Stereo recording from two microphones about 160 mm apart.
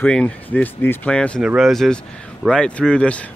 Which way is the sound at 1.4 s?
5° right (ahead or behind).